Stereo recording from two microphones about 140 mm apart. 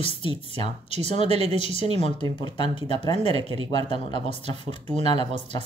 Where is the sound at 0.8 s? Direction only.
50° right (ahead or behind).